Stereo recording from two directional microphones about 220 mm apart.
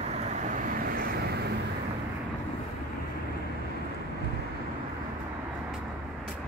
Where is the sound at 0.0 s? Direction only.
35° right (ahead or behind).